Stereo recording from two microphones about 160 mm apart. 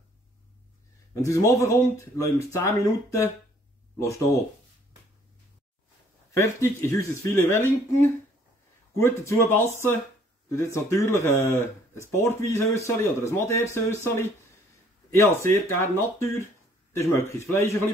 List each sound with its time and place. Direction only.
1.2 s speech: 20° left (ahead or behind)
6.3 s speech: 15° left (ahead or behind)